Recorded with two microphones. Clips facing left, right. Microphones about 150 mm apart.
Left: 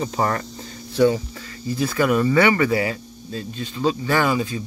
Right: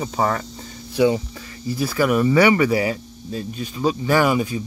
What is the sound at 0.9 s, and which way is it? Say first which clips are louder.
Speech: even; 15° right (ahead or behind).